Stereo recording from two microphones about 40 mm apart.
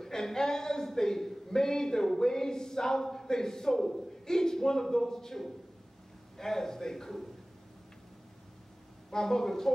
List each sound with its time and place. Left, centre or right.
0.0 s speech: centre
9.1 s speech: centre